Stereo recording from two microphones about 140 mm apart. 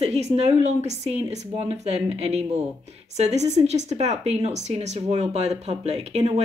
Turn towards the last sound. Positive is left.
turn(degrees=-50)  # may be behind; listen again after turning